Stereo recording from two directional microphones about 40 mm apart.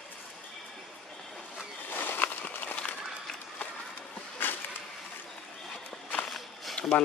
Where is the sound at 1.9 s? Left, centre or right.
Left.